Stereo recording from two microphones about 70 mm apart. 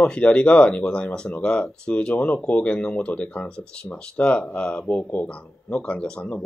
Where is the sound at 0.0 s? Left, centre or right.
Centre.